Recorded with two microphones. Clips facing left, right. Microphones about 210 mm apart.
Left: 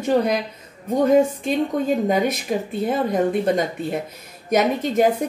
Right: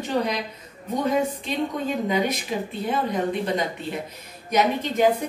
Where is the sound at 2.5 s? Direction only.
50° left (ahead or behind).